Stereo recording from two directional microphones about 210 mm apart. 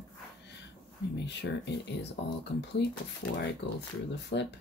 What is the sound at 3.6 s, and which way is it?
Speech, 55° left (ahead or behind).